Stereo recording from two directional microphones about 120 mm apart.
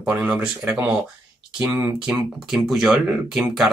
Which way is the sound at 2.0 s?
Centre (ahead or behind).